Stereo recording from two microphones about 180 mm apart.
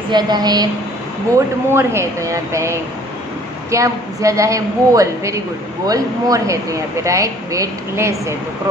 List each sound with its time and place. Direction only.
0.1 s a woman's voice: 25° right (ahead or behind)